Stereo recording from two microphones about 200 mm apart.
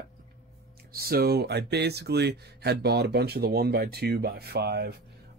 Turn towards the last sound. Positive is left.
turn(degrees=-55)  # may be behind; listen again after turning